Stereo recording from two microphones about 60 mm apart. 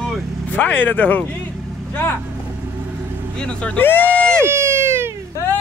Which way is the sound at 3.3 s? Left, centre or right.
Centre.